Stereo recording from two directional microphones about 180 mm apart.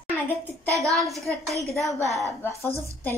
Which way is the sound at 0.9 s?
Centre (ahead or behind).